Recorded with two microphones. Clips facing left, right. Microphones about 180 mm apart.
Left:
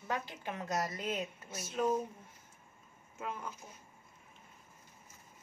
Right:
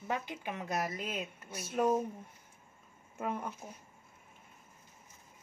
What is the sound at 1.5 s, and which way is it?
Speech, 60° right (ahead or behind).